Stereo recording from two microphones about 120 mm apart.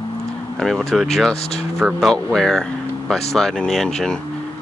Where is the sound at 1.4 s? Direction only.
60° left (ahead or behind).